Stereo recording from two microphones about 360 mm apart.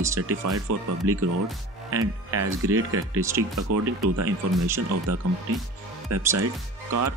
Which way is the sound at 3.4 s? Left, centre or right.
Centre.